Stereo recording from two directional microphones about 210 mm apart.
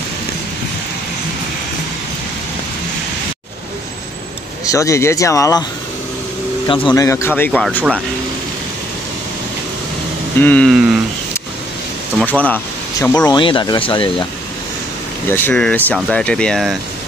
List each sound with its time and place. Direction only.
4.6 s speech: 15° left (ahead or behind)
6.9 s speech: 15° left (ahead or behind)
10.4 s speech: 5° left (ahead or behind)
12.3 s speech: 10° left (ahead or behind); by 14.2 s 25° left (ahead or behind)
15.2 s speech: 10° left (ahead or behind)